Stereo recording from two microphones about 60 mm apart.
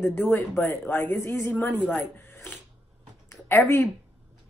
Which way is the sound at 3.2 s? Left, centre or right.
Left.